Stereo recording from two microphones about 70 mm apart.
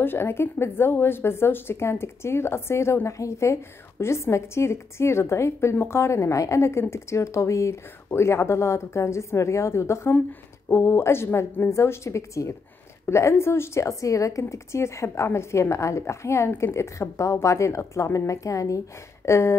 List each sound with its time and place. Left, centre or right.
0.0 s a woman's voice: left